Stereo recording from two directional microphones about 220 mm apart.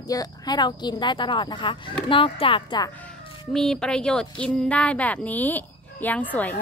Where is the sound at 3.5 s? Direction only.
Centre (ahead or behind).